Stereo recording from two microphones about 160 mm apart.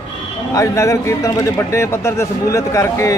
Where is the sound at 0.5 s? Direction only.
20° left (ahead or behind).